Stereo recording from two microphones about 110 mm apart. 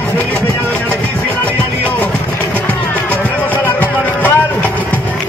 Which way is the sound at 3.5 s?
15° left (ahead or behind).